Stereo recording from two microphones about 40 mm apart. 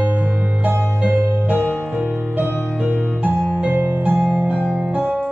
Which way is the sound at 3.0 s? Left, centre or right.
Right.